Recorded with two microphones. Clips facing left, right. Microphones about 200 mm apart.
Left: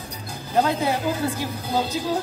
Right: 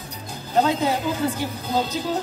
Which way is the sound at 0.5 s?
10° left (ahead or behind).